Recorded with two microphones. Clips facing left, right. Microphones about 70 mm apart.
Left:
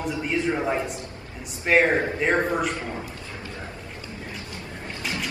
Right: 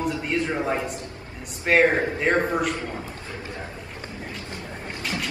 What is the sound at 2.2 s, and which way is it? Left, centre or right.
Speech, centre.